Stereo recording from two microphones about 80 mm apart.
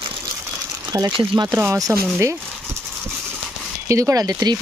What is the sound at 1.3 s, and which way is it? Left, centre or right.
Speech, right.